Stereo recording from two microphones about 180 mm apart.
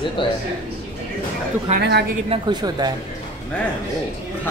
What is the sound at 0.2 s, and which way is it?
Speech, 30° left (ahead or behind).